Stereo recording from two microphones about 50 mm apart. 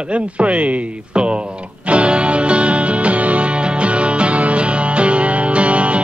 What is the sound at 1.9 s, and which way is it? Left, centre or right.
Music, right.